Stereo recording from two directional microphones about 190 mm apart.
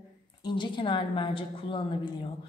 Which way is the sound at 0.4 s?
25° left (ahead or behind).